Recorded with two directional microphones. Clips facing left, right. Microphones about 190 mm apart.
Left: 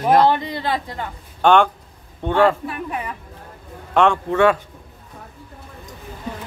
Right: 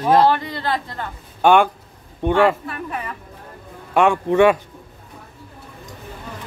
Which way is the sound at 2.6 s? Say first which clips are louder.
Left 2 dB; 15° left (ahead or behind).